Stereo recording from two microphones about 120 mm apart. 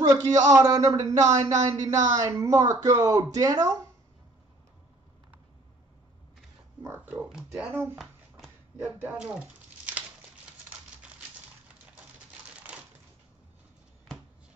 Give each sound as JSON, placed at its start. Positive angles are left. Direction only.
{"t": 0.0, "sound": "a man's voice", "side_deg": -30}
{"t": 7.1, "sound": "speech", "side_deg": -5}
{"t": 7.5, "sound": "speech", "side_deg": -15}